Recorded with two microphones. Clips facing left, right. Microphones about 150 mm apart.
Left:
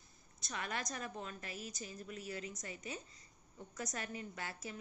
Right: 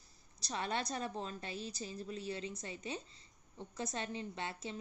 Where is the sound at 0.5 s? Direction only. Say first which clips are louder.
Right 4 dB; 30° right (ahead or behind).